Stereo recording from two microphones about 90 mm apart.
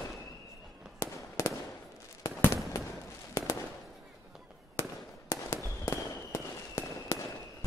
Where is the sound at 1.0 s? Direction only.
35° left (ahead or behind).